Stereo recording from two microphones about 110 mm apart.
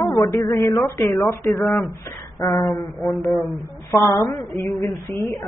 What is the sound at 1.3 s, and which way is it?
Speech, 30° left (ahead or behind).